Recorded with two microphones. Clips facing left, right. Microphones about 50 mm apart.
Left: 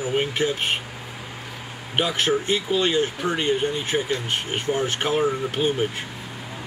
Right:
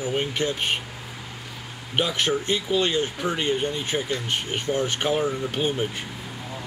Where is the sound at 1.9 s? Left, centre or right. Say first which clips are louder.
Left 2 dB; centre.